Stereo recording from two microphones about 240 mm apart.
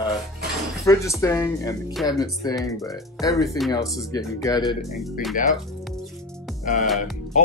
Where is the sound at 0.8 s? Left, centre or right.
Centre.